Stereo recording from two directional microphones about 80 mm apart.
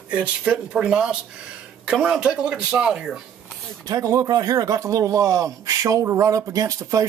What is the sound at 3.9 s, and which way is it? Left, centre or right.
Speech, right.